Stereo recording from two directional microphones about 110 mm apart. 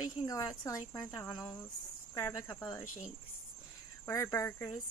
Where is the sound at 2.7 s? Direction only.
25° left (ahead or behind).